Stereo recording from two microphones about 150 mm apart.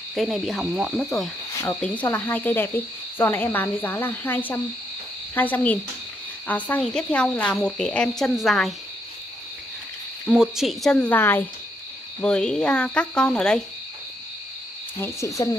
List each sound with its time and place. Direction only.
0.1 s speech: centre (ahead or behind)
1.5 s cricket: 20° left (ahead or behind)
1.8 s speech: 10° left (ahead or behind)
10.2 s speech: 5° right (ahead or behind)
15.0 s speech: 20° left (ahead or behind)